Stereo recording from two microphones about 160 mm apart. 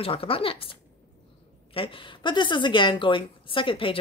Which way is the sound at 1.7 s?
35° left (ahead or behind).